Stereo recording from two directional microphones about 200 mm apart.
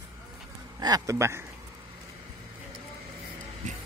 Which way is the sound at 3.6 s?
40° right (ahead or behind).